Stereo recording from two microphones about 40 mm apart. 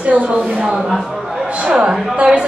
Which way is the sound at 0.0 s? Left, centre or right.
Right.